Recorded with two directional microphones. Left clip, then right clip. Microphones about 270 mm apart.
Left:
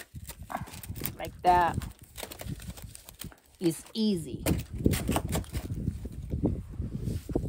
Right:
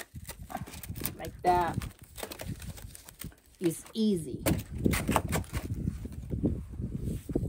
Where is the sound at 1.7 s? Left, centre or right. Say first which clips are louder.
Left 3 dB; centre.